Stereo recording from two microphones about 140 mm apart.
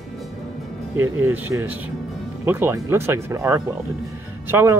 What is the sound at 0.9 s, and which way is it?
Speech, 15° right (ahead or behind).